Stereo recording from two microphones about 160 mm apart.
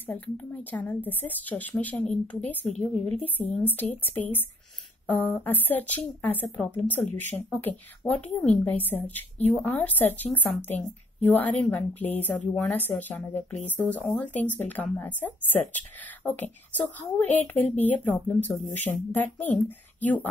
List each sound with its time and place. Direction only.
0.0 s speech: 15° left (ahead or behind)
7.0 s speech: 50° left (ahead or behind)
8.0 s speech: 10° left (ahead or behind)